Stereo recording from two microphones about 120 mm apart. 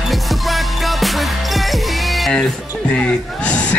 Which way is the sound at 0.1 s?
Centre (ahead or behind).